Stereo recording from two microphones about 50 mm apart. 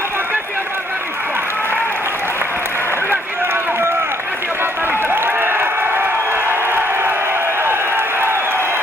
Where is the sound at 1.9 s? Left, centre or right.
Right.